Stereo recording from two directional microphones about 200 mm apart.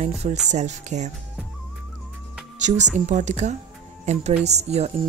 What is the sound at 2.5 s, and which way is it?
A woman's voice, 35° right (ahead or behind).